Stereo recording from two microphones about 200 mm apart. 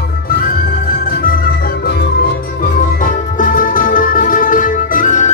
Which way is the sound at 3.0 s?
45° left (ahead or behind).